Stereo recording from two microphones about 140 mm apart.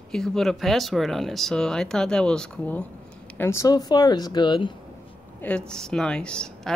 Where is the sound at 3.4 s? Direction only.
20° left (ahead or behind).